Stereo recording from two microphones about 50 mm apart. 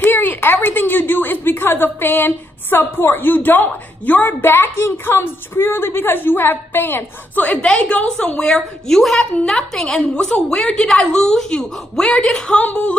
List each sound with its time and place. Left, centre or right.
0.0 s a woman's voice: left
7.5 s a woman's voice: centre
8.4 s a woman's voice: centre
12.5 s a woman's voice: left